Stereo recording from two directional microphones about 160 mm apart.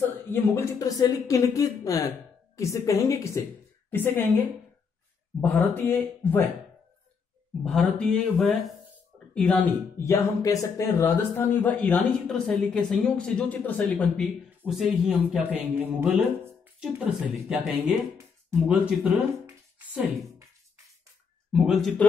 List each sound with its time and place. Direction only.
0.1 s speech: 15° left (ahead or behind)
5.4 s speech: 10° left (ahead or behind)
7.6 s speech: centre (ahead or behind)
21.5 s speech: centre (ahead or behind)